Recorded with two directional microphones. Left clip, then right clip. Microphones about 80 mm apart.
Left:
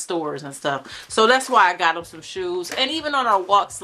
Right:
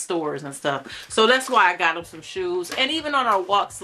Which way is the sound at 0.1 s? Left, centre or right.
Centre.